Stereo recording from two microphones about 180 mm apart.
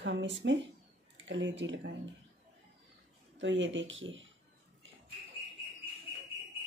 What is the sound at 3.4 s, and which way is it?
Speech, 90° right.